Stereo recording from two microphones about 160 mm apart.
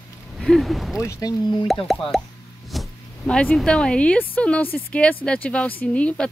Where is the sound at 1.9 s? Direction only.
Centre (ahead or behind).